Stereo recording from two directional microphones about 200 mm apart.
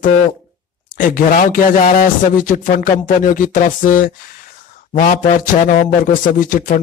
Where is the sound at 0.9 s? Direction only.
45° left (ahead or behind).